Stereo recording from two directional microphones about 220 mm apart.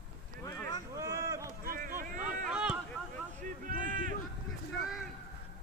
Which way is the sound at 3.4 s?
35° right (ahead or behind).